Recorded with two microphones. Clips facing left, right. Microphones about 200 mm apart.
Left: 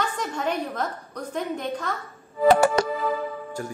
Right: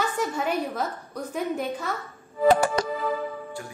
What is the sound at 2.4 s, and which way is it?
Music, 70° left (ahead or behind).